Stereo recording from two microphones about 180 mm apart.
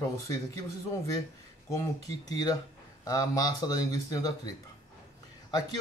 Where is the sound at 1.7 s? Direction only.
20° left (ahead or behind).